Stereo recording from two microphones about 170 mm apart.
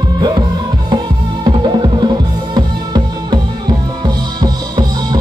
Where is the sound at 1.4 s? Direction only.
25° right (ahead or behind).